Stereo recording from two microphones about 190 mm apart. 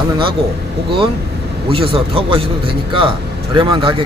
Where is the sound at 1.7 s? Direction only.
30° right (ahead or behind).